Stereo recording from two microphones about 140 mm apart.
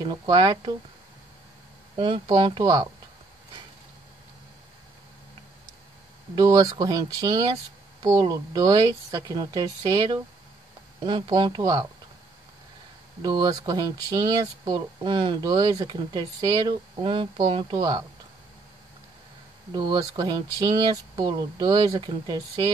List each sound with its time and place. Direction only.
0.0 s speech: 35° right (ahead or behind)
2.0 s speech: 35° right (ahead or behind)
6.3 s speech: 25° right (ahead or behind)
11.1 s speech: 35° right (ahead or behind)
13.2 s speech: 30° right (ahead or behind)
19.7 s speech: 30° right (ahead or behind)